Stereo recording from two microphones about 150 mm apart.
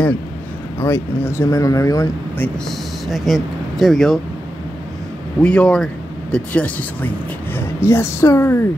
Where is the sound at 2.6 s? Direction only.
Centre (ahead or behind).